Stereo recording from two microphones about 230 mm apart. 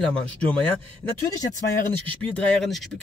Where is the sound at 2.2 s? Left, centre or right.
Centre.